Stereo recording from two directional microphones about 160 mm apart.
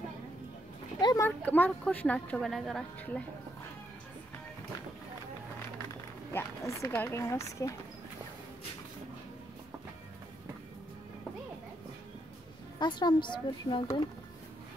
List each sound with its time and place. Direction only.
1.0 s a sound: 20° left (ahead or behind)
1.4 s a woman's voice: 10° left (ahead or behind)
6.3 s a woman's voice: 20° left (ahead or behind)
12.7 s a woman's voice: 25° left (ahead or behind)